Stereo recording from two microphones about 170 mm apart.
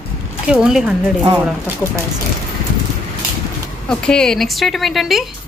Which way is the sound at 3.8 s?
5° left (ahead or behind).